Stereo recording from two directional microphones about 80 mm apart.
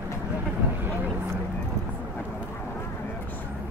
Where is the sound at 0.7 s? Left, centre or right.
Right.